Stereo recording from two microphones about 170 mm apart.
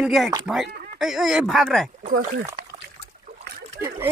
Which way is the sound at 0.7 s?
70° right (ahead or behind).